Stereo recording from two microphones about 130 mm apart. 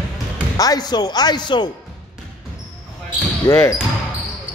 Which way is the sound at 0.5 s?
30° left (ahead or behind).